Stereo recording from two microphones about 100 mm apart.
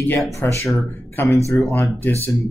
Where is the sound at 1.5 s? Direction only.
15° left (ahead or behind).